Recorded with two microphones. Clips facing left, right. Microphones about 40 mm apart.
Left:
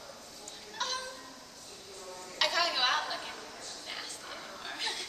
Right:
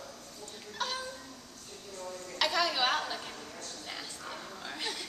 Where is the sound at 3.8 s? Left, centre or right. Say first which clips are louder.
Even; centre.